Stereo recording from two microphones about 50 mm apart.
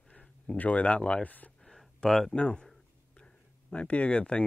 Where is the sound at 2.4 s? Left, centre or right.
Left.